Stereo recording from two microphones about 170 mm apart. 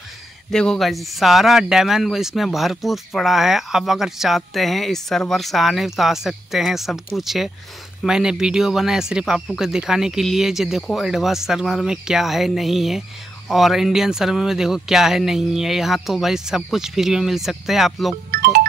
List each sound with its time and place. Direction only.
0.5 s speech: 5° left (ahead or behind)
18.3 s music: 60° right (ahead or behind)